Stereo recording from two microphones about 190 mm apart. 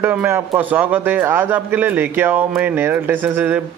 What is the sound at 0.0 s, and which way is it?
Speech, 10° right (ahead or behind).